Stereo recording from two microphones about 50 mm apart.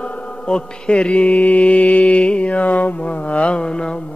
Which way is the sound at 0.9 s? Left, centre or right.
Left.